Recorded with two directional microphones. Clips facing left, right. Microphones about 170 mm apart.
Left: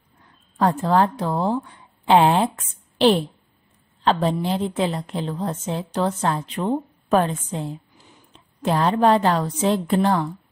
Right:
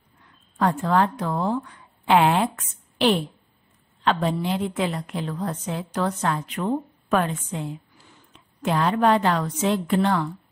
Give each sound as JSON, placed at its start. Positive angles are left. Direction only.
{"t": 0.6, "sound": "a woman's voice", "side_deg": 35}